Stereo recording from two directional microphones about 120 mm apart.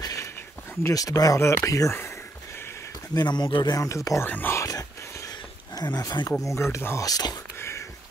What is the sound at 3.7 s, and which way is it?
Speech, 25° left (ahead or behind).